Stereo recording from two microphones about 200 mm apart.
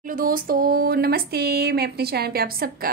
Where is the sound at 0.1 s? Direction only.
45° right (ahead or behind).